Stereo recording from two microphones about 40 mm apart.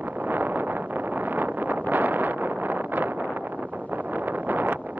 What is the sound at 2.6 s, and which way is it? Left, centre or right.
Wind noise, right.